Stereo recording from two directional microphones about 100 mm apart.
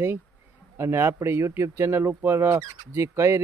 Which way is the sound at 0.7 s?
25° right (ahead or behind).